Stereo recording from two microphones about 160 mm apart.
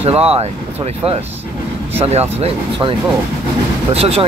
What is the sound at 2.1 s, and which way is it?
Speech, 35° right (ahead or behind).